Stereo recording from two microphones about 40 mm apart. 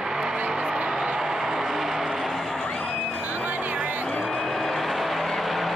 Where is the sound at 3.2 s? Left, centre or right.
Right.